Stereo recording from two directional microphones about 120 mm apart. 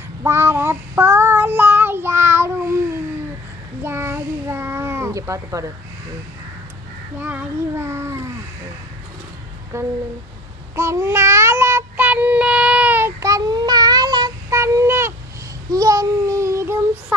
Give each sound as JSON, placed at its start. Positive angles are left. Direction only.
{"t": 0.2, "sound": "child singing", "side_deg": -20}
{"t": 3.8, "sound": "a sound", "side_deg": -20}
{"t": 7.2, "sound": "a child's voice", "side_deg": -15}
{"t": 9.7, "sound": "a child's voice", "side_deg": -25}
{"t": 10.8, "sound": "child singing", "side_deg": -25}
{"t": 13.2, "sound": "child singing", "side_deg": -30}
{"t": 14.5, "sound": "a sound", "side_deg": -20}
{"t": 15.7, "sound": "child singing", "side_deg": -30}